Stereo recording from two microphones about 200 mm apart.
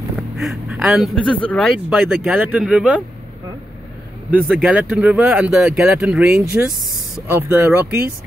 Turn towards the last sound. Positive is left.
turn(degrees=-10)  # may be behind; listen again after turning